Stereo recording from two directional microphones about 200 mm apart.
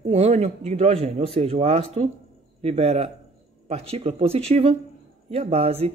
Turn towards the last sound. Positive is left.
turn(degrees=-30)  # may be behind; listen again after turning